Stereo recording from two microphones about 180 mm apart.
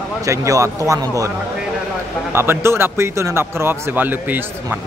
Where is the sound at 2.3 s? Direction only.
15° right (ahead or behind).